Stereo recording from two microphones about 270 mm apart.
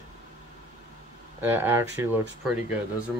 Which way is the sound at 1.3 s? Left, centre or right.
Centre.